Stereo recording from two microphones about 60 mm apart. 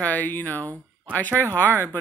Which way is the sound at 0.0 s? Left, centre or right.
Left.